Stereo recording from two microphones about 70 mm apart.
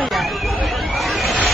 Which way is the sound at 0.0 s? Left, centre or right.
Centre.